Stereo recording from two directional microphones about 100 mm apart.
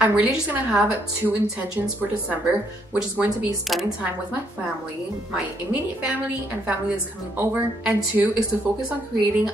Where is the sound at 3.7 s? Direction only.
Centre (ahead or behind).